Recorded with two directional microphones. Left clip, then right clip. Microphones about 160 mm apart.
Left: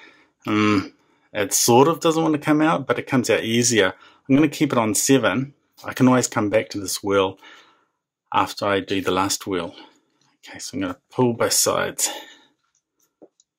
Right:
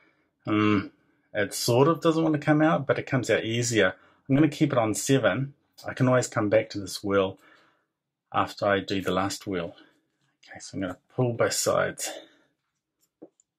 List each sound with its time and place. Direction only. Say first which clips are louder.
0.0 s speech: left 6 dB; 40° left (ahead or behind)